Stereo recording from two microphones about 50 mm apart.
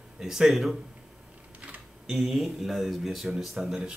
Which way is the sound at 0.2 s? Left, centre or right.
Centre.